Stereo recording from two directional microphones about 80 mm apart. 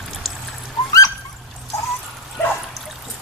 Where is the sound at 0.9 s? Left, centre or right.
Left.